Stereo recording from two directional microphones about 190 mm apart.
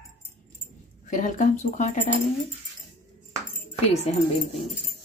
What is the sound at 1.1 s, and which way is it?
Speech, 40° left (ahead or behind).